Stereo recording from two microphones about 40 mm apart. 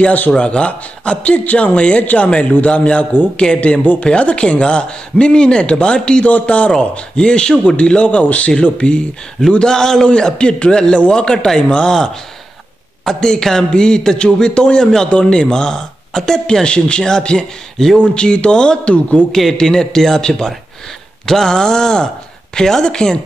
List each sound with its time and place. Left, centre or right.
0.5 s a man's voice: left
6.2 s a man's voice: left
8.0 s a man's voice: left
19.5 s a man's voice: centre